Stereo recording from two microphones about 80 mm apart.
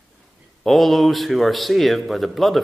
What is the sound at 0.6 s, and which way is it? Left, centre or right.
A man's voice, centre.